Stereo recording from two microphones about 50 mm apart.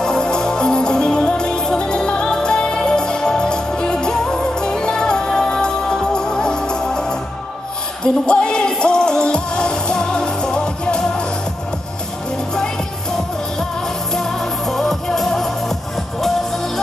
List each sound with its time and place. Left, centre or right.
0.0 s music: centre
14.1 s music: centre